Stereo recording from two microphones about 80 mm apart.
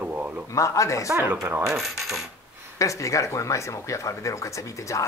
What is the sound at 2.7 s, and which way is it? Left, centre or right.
Speech, left.